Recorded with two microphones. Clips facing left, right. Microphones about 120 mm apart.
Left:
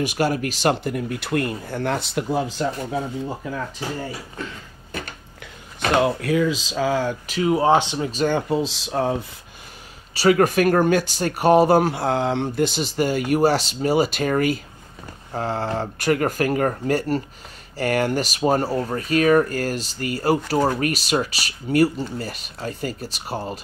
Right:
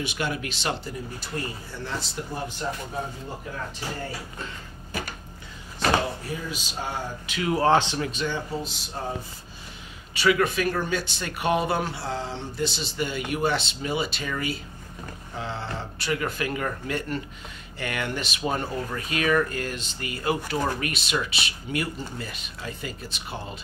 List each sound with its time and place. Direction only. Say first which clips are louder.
0.0 s speech: left 8 dB; 45° left (ahead or behind); by 3.0 s 90° left
5.8 s speech: left 5 dB; 65° left (ahead or behind); by 7.2 s 90° left
7.4 s speech: left 3 dB; 15° left (ahead or behind)
8.1 s speech: left 8 dB; 45° left (ahead or behind)
8.4 s speech: left 9 dB; 75° left (ahead or behind)
10.1 s speech: left 6 dB; 40° left (ahead or behind)